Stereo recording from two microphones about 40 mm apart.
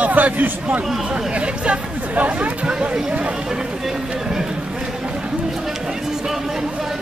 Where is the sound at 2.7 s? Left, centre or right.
Right.